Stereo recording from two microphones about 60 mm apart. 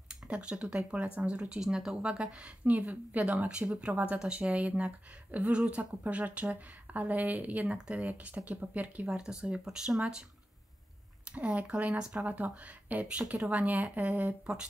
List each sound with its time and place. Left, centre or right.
0.1 s speech: centre
7.7 s speech: centre
8.0 s speech: right; by 10.0 s centre
11.2 s speech: right